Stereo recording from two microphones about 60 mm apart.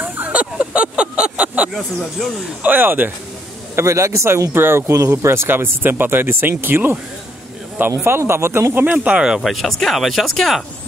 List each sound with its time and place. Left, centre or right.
0.0 s a sound: right
0.3 s a sound: right
2.6 s speech: right
3.8 s speech: right
8.0 s speech: right
9.0 s speech: centre
9.4 s speech: centre